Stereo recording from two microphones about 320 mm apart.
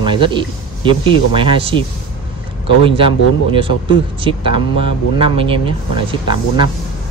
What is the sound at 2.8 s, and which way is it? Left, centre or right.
Speech, centre.